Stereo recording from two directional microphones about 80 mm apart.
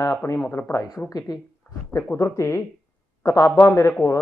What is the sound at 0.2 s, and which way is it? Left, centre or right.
Speech, left.